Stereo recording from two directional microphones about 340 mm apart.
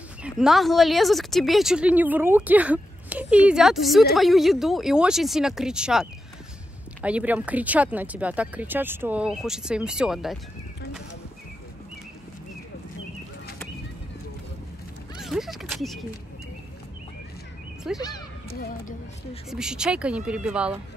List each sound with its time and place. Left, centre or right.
0.2 s speech: centre
15.1 s speech: centre
17.9 s speech: centre
18.5 s speech: left
19.5 s speech: centre